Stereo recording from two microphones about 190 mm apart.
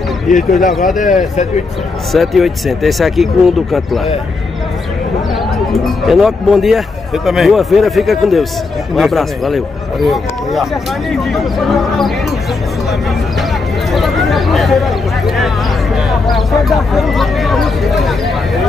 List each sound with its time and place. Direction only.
0.3 s a man's voice: 45° left (ahead or behind)
2.1 s speech: centre (ahead or behind)
5.7 s speech: centre (ahead or behind)
13.9 s a sound: centre (ahead or behind)